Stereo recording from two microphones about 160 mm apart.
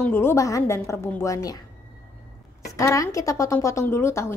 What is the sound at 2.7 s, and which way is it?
A woman's voice, 20° left (ahead or behind).